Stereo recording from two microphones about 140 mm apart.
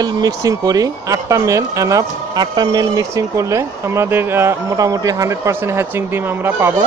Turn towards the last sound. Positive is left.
turn(degrees=-15)  # may be behind; listen again after turning